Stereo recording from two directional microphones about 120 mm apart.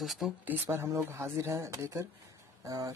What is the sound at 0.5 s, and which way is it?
Speech, 20° right (ahead or behind).